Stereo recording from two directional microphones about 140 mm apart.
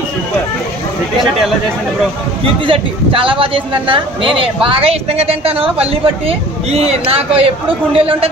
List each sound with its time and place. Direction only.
2.6 s a woman's voice: 40° right (ahead or behind)